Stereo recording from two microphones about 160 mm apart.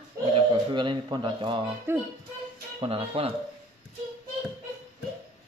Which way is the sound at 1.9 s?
15° right (ahead or behind).